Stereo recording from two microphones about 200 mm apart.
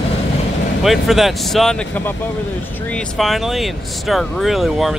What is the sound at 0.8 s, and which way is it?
Speech, centre (ahead or behind).